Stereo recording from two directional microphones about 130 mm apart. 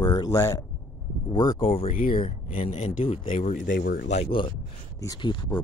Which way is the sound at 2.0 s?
90° left.